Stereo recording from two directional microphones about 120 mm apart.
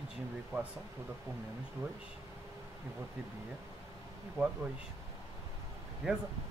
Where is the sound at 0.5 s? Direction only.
20° right (ahead or behind).